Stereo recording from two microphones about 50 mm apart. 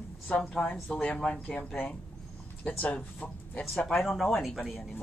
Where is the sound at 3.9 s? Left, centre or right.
Centre.